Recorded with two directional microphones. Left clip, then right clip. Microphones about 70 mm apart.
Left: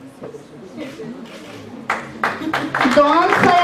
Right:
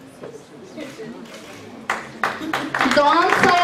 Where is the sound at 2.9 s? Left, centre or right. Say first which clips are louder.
Left 2 dB; centre.